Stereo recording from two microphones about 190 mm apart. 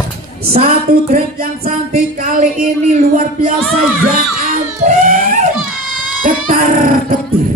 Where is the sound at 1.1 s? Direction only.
50° right (ahead or behind).